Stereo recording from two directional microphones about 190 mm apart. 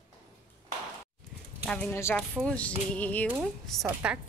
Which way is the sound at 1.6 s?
5° left (ahead or behind).